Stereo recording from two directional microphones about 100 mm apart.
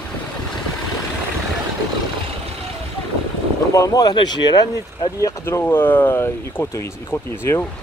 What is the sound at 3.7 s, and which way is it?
Speech, 35° left (ahead or behind).